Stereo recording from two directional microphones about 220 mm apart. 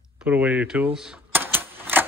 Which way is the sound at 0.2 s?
5° right (ahead or behind).